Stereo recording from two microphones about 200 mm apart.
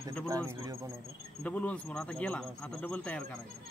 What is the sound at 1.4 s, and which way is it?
Speech, 5° left (ahead or behind).